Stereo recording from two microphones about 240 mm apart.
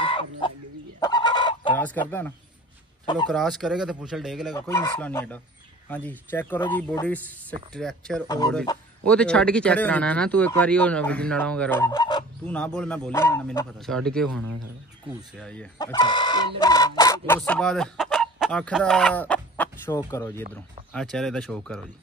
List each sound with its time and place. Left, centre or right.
0.0 s chicken: left
1.0 s fowl: centre
1.8 s speech: centre
4.6 s speech: centre
12.4 s speech: centre